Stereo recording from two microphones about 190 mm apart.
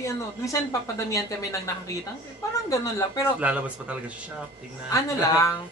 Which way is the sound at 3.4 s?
5° right (ahead or behind).